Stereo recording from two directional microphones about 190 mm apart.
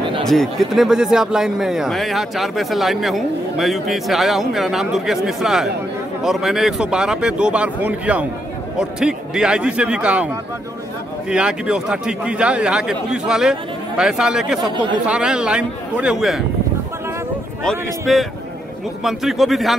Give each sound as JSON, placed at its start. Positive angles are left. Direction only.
{"t": 0.3, "sound": "a man's voice", "side_deg": 0}
{"t": 14.6, "sound": "speech", "side_deg": -25}
{"t": 15.0, "sound": "a man's voice", "side_deg": -5}
{"t": 17.6, "sound": "a man's voice", "side_deg": 0}